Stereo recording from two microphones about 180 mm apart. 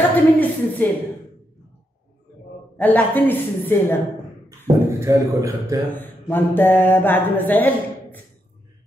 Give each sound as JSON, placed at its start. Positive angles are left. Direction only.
{"t": 0.1, "sound": "a sound", "side_deg": 10}
{"t": 2.8, "sound": "speech", "side_deg": 10}
{"t": 4.5, "sound": "speech", "side_deg": -15}
{"t": 6.2, "sound": "speech", "side_deg": 10}